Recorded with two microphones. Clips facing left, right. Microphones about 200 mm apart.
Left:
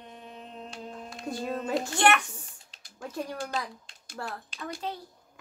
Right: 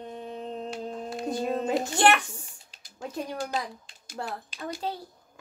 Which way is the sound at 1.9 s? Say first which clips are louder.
Right 1 dB; 30° right (ahead or behind).